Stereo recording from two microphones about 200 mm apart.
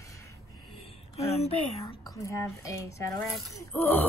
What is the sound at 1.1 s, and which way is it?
Speech, 30° left (ahead or behind).